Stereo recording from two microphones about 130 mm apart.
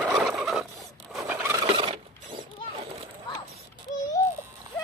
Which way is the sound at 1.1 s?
Centre (ahead or behind).